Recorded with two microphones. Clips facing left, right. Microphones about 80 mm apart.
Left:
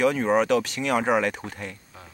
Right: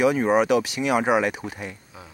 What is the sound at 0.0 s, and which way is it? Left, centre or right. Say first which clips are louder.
Speech: right 2 dB; centre.